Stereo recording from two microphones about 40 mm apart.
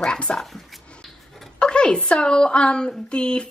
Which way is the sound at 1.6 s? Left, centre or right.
Left.